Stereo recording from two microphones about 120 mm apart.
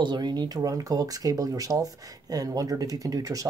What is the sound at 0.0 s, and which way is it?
Speech, 35° right (ahead or behind).